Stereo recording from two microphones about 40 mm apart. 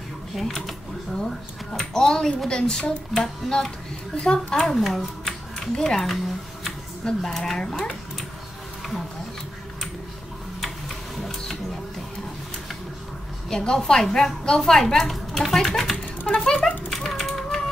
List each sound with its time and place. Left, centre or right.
0.3 s speech: centre
4.7 s speech: centre
5.2 s music: centre
7.2 s speech: centre
13.5 s speech: centre
16.3 s a sound: centre